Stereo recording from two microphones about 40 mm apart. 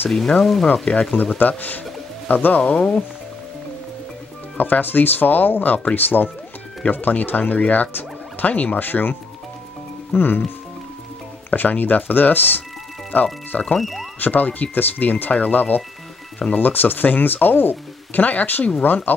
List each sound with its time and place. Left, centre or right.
0.4 s speech: centre
0.8 s speech: left
2.2 s speech: left
2.7 s speech: left
4.6 s speech: left
10.1 s speech: left
11.5 s speech: left
13.7 s speech: centre
14.2 s speech: left